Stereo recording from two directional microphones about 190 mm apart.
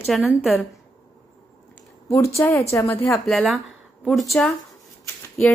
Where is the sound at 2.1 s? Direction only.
15° left (ahead or behind).